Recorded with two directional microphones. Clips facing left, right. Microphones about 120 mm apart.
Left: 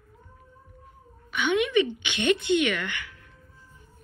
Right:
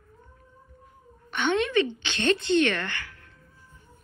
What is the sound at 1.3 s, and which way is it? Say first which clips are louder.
A woman's voice: even; 15° left (ahead or behind).